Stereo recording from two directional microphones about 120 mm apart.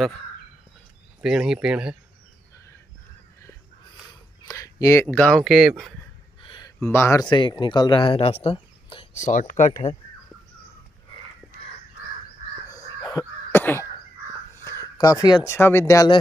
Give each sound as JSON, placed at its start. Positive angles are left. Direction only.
{"t": 1.2, "sound": "speech", "side_deg": -5}
{"t": 4.5, "sound": "a sound", "side_deg": 30}
{"t": 5.0, "sound": "speech", "side_deg": 10}
{"t": 5.4, "sound": "speech", "side_deg": 0}
{"t": 6.4, "sound": "a sound", "side_deg": 45}
{"t": 6.8, "sound": "speech", "side_deg": 20}
{"t": 7.2, "sound": "speech", "side_deg": 40}
{"t": 9.1, "sound": "speech", "side_deg": 85}
{"t": 13.2, "sound": "cough", "side_deg": 35}
{"t": 13.5, "sound": "a sound", "side_deg": 20}
{"t": 15.4, "sound": "speech", "side_deg": 20}